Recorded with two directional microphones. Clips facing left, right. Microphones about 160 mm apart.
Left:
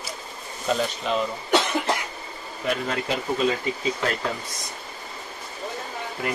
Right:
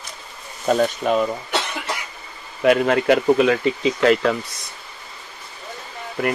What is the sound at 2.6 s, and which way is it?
Speech, 70° right (ahead or behind).